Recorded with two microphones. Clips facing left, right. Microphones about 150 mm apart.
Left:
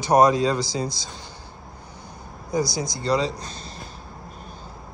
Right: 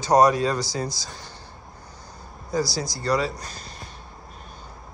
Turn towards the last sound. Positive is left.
turn(degrees=25)  # may be behind; listen again after turning